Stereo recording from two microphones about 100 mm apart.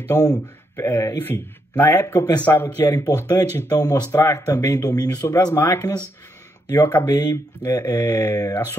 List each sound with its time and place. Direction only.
0.7 s a man's voice: 25° left (ahead or behind)
3.1 s a man's voice: 35° left (ahead or behind)
7.1 s speech: 35° left (ahead or behind)